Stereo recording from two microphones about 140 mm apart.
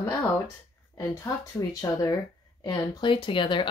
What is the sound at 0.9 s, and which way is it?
Speech, 25° left (ahead or behind).